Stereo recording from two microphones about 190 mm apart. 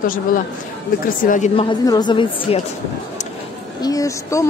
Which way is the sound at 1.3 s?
40° left (ahead or behind).